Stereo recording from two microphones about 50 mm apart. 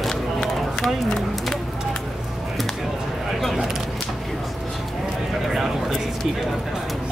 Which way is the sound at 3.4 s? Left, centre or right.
Centre.